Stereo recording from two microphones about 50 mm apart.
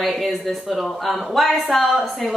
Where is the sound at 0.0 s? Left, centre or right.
Centre.